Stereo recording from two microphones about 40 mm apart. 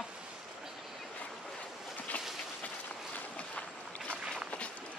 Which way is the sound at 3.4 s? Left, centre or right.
Left.